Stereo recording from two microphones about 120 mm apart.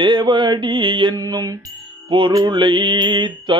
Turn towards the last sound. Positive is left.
turn(degrees=-40)  # may be behind; listen again after turning